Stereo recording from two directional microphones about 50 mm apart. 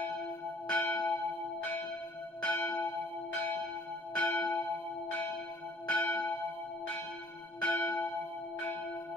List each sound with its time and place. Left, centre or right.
0.7 s church bell: left
2.4 s church bell: left
4.1 s church bell: left
5.9 s church bell: left
7.6 s church bell: left